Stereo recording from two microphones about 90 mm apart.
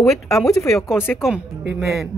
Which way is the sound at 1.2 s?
10° right (ahead or behind).